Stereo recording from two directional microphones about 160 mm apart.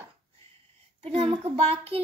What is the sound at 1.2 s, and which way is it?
Speech, 40° right (ahead or behind).